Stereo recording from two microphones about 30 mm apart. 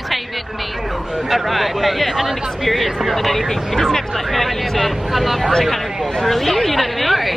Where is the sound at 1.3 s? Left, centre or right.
Centre.